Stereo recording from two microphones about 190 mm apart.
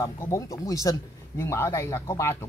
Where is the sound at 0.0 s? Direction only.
15° left (ahead or behind).